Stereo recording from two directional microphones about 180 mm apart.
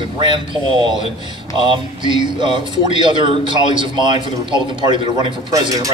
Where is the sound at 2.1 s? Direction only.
25° right (ahead or behind).